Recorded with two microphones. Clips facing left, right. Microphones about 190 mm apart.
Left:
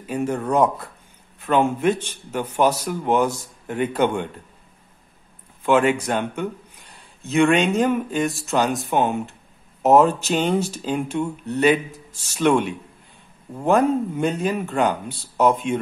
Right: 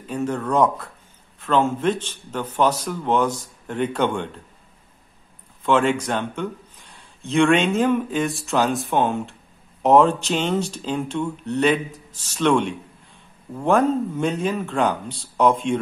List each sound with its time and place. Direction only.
0.0 s speech: 10° left (ahead or behind)
5.6 s speech: 5° left (ahead or behind)